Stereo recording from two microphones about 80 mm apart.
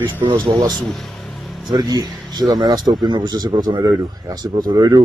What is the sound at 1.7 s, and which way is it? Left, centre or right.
Speech, right.